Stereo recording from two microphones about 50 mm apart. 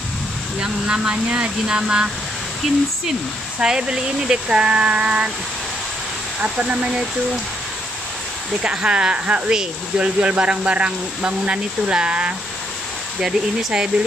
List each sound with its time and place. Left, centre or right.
0.6 s speech: centre
6.4 s speech: right
8.6 s speech: right
13.2 s speech: centre